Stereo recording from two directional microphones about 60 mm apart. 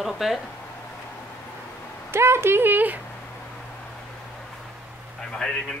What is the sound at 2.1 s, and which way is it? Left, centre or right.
Speech, right.